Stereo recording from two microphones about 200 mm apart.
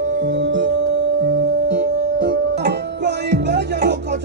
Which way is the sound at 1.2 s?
45° right (ahead or behind).